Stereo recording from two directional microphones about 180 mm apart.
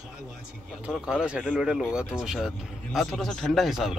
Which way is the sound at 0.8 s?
5° right (ahead or behind).